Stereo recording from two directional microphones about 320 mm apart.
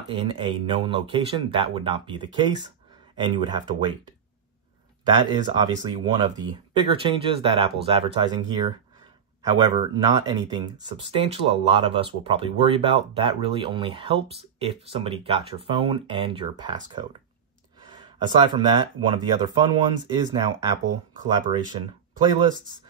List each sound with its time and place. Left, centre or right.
0.1 s speech: centre
5.1 s speech: centre
17.7 s a sound: centre
19.0 s speech: centre